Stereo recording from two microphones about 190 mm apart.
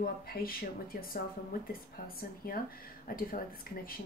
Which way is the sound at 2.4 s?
55° left (ahead or behind).